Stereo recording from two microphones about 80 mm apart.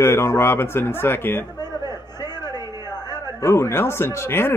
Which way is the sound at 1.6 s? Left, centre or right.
Left.